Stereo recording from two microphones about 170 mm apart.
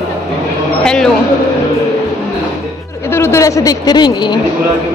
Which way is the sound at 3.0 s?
15° left (ahead or behind).